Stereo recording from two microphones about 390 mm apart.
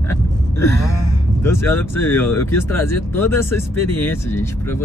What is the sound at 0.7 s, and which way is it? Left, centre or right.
Gasp, left.